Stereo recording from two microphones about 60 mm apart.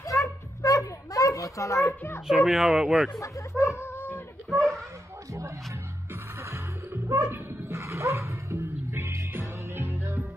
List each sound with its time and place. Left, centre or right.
0.0 s children playing: left
2.2 s speech: centre
3.2 s speech: left
3.8 s cat: left
6.5 s music: right